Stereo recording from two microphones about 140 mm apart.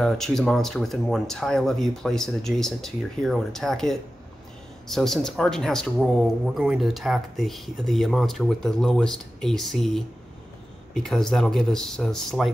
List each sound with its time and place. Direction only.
0.0 s speech: 5° left (ahead or behind)